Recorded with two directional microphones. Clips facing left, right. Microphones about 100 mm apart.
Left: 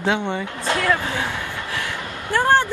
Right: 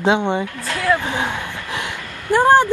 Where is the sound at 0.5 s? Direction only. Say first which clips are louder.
Left 3 dB; 25° left (ahead or behind).